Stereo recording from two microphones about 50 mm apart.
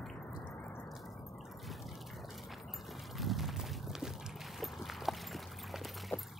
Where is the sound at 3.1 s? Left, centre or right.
Centre.